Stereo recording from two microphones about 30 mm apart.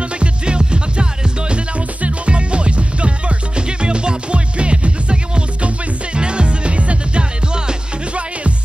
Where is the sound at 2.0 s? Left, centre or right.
Right.